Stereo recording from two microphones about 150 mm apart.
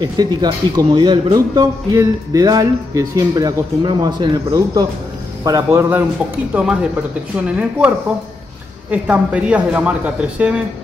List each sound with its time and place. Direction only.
0.0 s speech: 30° right (ahead or behind); by 7.9 s 10° right (ahead or behind)
8.9 s speech: 10° right (ahead or behind)